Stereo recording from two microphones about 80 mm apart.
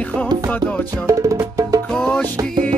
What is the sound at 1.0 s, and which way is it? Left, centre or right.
Music, right.